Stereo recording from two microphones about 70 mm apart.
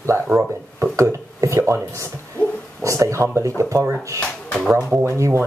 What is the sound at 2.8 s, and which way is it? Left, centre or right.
Speech, right.